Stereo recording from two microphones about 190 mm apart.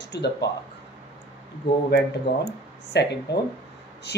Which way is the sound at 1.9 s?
55° left (ahead or behind).